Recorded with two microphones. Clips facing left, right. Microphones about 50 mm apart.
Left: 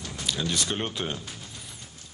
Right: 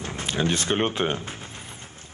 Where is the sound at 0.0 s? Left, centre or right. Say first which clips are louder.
Right 5 dB; right.